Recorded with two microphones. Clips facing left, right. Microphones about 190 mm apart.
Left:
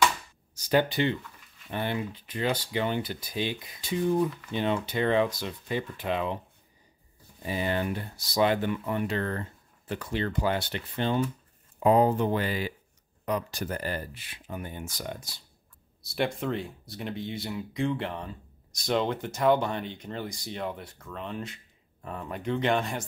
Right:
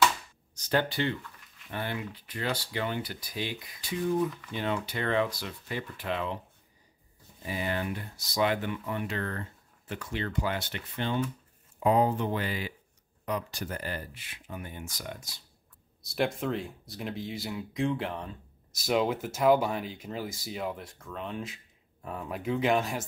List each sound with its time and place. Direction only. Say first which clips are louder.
0.6 s speech: left 4 dB; 15° left (ahead or behind)
7.4 s speech: left 3 dB; 30° left (ahead or behind)
16.0 s speech: even; centre (ahead or behind)